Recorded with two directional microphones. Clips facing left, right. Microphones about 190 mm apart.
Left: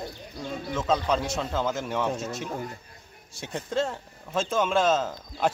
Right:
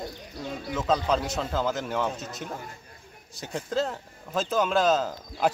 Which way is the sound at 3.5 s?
Centre (ahead or behind).